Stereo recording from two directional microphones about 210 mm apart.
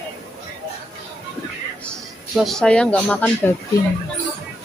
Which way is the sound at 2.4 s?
Centre (ahead or behind).